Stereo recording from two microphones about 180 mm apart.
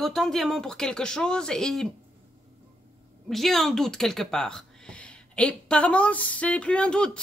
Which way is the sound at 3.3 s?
Centre (ahead or behind).